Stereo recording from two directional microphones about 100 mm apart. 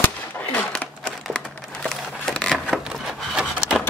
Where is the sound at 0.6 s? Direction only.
5° left (ahead or behind).